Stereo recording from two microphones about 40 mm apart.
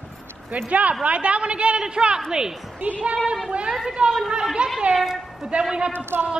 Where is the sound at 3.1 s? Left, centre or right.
Centre.